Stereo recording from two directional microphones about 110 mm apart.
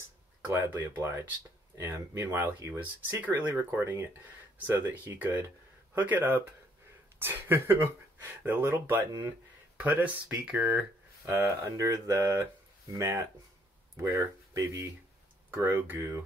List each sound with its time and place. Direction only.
0.5 s speech: 15° right (ahead or behind)